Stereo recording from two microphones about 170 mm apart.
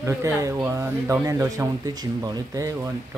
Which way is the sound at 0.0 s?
15° right (ahead or behind).